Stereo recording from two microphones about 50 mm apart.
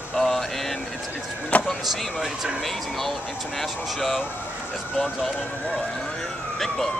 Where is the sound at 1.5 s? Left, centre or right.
Left.